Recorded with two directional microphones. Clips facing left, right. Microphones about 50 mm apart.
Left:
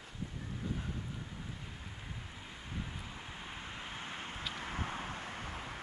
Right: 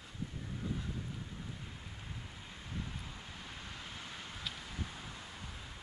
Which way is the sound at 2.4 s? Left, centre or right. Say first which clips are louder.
Left 1 dB; centre.